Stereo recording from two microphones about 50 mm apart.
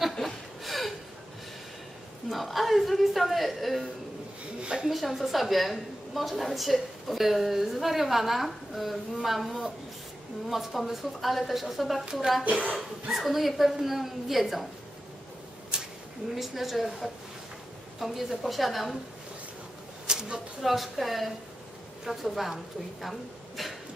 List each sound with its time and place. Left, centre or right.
0.2 s chuckle: centre
2.2 s a woman's voice: centre
4.6 s a sound: centre
4.8 s a woman's voice: centre
12.4 s speech: right
13.1 s a woman's voice: centre
15.7 s a sound: centre
16.3 s a woman's voice: centre
20.1 s speech: centre
20.6 s a woman's voice: centre
23.0 s a sound: centre